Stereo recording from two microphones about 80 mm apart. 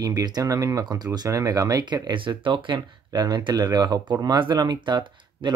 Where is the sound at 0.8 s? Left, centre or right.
Right.